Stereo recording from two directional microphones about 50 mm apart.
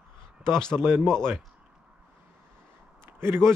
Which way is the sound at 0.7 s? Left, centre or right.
Right.